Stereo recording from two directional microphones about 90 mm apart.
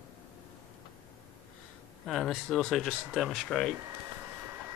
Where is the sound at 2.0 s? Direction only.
Centre (ahead or behind).